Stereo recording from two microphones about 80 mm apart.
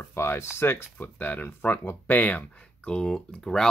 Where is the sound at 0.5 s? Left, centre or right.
Left.